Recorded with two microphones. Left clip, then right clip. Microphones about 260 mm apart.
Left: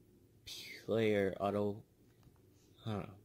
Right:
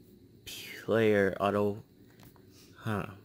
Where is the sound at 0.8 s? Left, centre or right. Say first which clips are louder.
Right 7 dB; centre.